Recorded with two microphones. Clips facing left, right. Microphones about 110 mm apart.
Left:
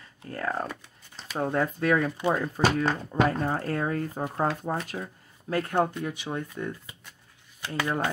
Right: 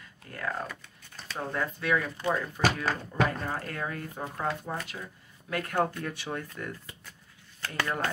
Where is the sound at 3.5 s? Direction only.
35° left (ahead or behind).